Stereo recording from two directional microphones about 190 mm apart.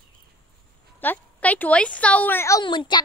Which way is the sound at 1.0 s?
10° left (ahead or behind).